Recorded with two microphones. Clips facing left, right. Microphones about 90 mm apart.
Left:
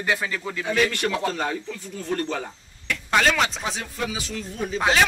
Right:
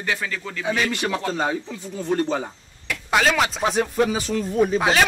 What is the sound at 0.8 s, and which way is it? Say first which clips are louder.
A man's voice: right 1 dB; 15° right (ahead or behind).